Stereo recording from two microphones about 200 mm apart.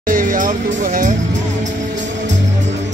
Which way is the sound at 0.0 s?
40° right (ahead or behind).